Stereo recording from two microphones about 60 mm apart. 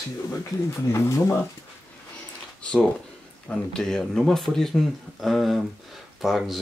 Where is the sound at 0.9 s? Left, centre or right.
Left.